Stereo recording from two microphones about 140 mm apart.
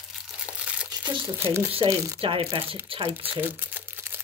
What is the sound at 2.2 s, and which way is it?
Speech, 40° right (ahead or behind).